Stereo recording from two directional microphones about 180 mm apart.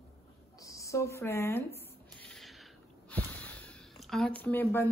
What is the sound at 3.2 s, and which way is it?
Snort, 60° right (ahead or behind).